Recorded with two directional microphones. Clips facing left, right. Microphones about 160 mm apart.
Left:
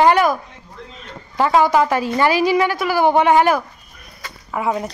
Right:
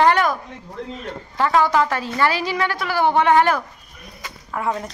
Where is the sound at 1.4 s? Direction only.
15° left (ahead or behind).